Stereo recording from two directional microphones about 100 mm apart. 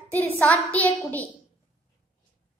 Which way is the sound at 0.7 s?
15° left (ahead or behind).